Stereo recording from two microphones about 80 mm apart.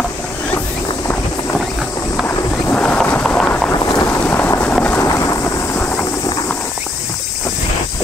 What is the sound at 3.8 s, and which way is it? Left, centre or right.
Boat, left.